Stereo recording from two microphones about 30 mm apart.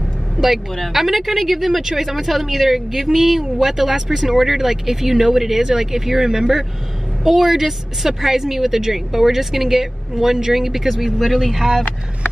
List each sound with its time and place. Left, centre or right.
0.4 s speech: centre
0.9 s speech: centre
1.8 s a woman's voice: centre
2.0 s speech: centre
3.6 s a woman's voice: centre